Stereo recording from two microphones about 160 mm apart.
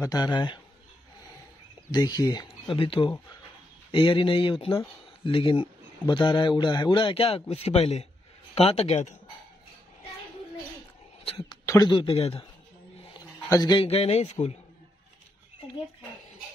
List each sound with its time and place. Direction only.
0.0 s speech: 25° left (ahead or behind)
1.9 s a man's voice: 25° left (ahead or behind); by 9.1 s 45° left (ahead or behind)
11.3 s speech: 20° left (ahead or behind); by 12.4 s 35° left (ahead or behind)
13.5 s speech: 25° left (ahead or behind)
13.8 s a man's voice: 40° left (ahead or behind)